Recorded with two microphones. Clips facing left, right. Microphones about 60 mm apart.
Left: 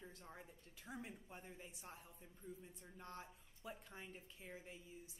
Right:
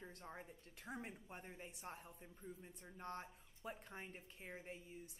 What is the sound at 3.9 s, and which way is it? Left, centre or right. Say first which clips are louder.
Speech: right 2 dB; right.